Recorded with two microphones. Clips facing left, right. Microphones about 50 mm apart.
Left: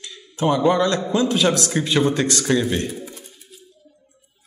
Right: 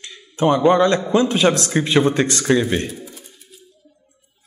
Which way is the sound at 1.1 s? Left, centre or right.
Right.